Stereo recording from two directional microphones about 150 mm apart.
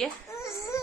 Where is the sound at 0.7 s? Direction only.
20° left (ahead or behind).